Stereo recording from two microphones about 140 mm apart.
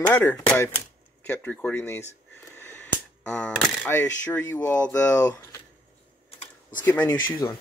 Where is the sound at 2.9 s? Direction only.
10° left (ahead or behind).